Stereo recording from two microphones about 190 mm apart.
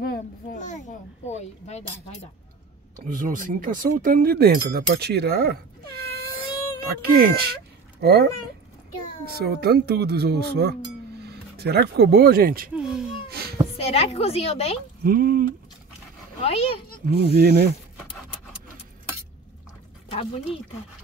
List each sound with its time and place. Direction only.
0.0 s a child's voice: 50° left (ahead or behind)
3.1 s speech: 45° right (ahead or behind)
7.0 s speech: 55° right (ahead or behind)
12.7 s speech: 5° right (ahead or behind)
13.7 s a child's voice: 30° left (ahead or behind)
15.0 s speech: 50° right (ahead or behind)
16.4 s a child's voice: 30° left (ahead or behind)
17.2 s speech: 55° right (ahead or behind)